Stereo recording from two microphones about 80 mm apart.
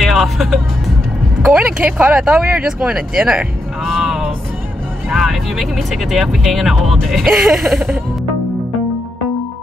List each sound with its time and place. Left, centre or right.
0.0 s music: centre
1.4 s speech: centre
1.8 s speech: centre